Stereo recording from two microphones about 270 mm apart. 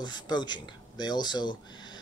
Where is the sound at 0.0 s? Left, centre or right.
Centre.